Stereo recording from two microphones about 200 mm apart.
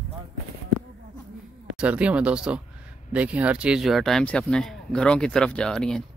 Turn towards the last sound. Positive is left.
turn(degrees=5)  # may be behind; listen again after turning